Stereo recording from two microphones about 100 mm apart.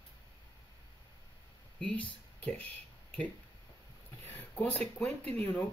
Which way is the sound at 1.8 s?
15° left (ahead or behind).